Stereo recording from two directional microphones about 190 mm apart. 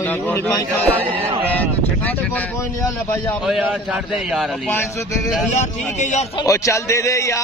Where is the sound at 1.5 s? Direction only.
10° left (ahead or behind).